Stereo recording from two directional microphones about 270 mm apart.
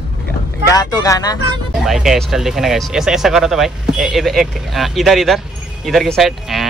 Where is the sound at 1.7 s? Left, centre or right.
Centre.